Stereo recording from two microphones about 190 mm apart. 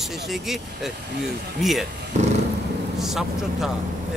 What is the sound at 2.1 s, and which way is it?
Dog, 40° right (ahead or behind).